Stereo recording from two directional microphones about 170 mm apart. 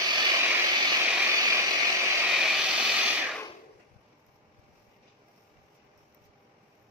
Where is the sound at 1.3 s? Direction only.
20° right (ahead or behind).